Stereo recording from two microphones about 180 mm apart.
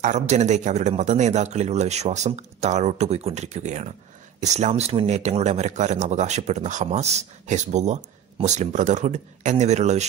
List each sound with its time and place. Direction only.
0.0 s a man's voice: 40° right (ahead or behind)